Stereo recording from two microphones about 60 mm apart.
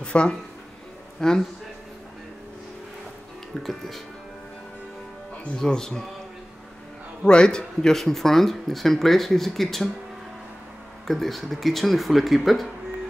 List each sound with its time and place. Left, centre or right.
0.0 s speech: centre
3.6 s speech: centre
5.6 s speech: centre
7.2 s speech: centre
11.1 s speech: centre